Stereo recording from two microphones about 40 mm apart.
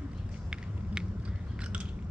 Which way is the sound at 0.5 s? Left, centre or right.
Centre.